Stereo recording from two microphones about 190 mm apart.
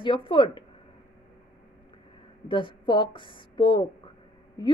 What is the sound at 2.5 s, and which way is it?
A woman's voice, 25° left (ahead or behind).